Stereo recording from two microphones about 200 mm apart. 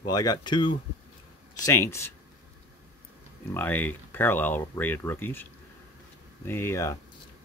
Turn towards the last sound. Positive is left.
turn(degrees=15)  # may be behind; listen again after turning